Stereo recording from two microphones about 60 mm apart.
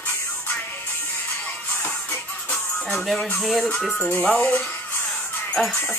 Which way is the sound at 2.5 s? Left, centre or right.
Centre.